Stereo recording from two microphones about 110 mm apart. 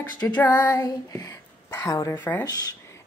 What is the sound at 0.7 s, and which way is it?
A woman's voice, 35° left (ahead or behind).